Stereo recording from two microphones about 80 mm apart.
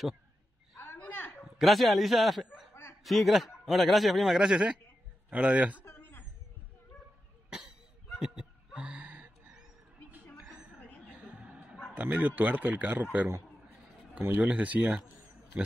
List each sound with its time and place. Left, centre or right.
0.9 s a sound: left
1.4 s speech: centre
2.7 s chuckle: left
3.0 s a man's voice: centre
5.3 s a man's voice: centre
5.9 s a sound: left
7.4 s cough: centre
8.2 s chuckle: centre
10.3 s a sound: centre
11.1 s music: centre
11.9 s speech: right
14.5 s speech: centre